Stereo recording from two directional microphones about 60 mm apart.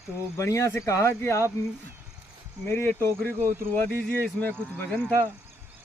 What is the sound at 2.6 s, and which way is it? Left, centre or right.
Speech, left.